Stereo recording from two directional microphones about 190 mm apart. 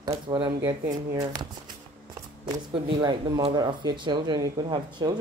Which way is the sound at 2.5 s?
30° right (ahead or behind).